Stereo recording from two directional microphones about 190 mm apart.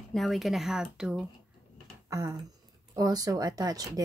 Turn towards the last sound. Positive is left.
turn(degrees=-20)  # may be behind; listen again after turning